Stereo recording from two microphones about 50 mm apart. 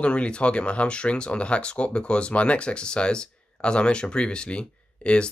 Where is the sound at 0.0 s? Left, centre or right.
Left.